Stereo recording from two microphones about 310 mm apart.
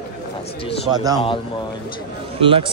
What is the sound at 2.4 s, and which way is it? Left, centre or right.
Speech, centre.